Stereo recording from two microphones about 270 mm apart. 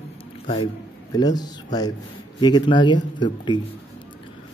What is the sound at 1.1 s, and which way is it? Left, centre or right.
A man's voice, centre.